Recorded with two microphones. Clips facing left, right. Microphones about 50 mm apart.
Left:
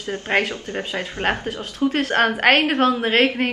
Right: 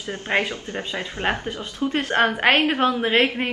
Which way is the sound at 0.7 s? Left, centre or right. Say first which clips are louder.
Left 3 dB; left.